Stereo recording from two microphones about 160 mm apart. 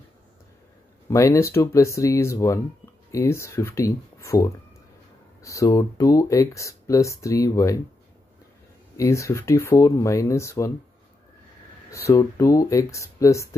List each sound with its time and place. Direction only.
1.1 s speech: 20° left (ahead or behind)
8.9 s speech: 20° left (ahead or behind)
11.9 s speech: 20° left (ahead or behind)